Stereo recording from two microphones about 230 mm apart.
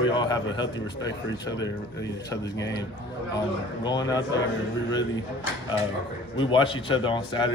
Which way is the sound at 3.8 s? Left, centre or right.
Centre.